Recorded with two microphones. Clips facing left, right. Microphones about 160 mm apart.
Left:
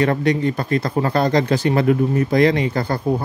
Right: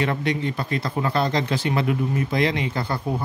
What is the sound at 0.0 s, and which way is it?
Speech, 45° left (ahead or behind).